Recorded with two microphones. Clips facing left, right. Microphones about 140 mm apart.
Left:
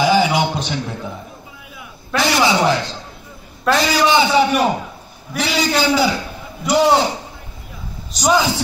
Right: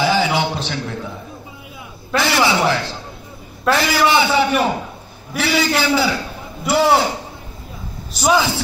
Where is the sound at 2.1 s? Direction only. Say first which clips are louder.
Left 1 dB; 15° left (ahead or behind).